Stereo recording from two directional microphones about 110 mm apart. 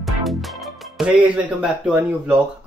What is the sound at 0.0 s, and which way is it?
Music, centre (ahead or behind).